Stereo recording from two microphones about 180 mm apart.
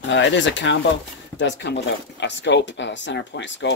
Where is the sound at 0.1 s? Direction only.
90° left.